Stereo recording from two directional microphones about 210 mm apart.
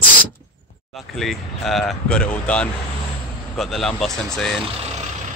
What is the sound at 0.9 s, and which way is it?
Speech, centre (ahead or behind).